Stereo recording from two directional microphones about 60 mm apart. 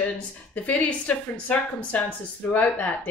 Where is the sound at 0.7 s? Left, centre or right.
Left.